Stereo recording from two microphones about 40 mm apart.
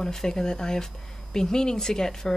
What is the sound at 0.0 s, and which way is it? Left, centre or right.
A woman's voice, centre.